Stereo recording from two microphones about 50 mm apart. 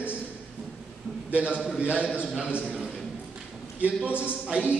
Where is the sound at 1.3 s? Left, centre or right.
Right.